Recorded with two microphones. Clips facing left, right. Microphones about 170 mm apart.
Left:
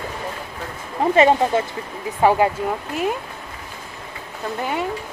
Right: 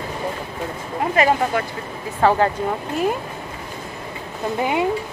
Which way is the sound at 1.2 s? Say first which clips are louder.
Left 3 dB; 25° left (ahead or behind).